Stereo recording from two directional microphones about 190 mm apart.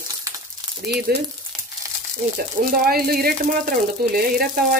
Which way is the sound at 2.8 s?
50° right (ahead or behind).